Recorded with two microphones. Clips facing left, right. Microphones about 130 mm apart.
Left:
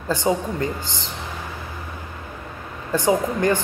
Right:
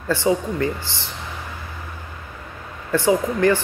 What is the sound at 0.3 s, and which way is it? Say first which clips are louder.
Speech: right 2 dB; 30° left (ahead or behind).